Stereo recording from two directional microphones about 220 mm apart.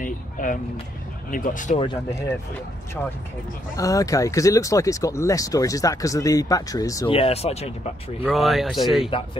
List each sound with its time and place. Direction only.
0.0 s a sound: 40° left (ahead or behind)
1.3 s speech: 35° left (ahead or behind)
1.8 s speech: 20° left (ahead or behind)
3.7 s speech: 15° left (ahead or behind)
7.2 s speech: 30° left (ahead or behind)
8.2 s speech: centre (ahead or behind)